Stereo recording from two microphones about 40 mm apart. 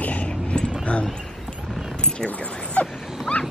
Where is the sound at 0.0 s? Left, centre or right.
Left.